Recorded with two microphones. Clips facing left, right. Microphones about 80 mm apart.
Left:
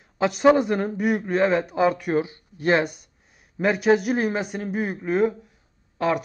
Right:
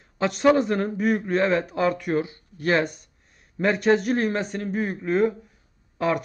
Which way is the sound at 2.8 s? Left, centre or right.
Centre.